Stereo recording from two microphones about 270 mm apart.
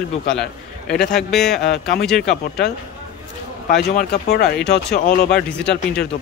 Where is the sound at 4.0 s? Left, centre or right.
Left.